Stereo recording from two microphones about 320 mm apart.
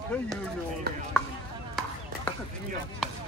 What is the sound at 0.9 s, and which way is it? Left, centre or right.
Chopping, right.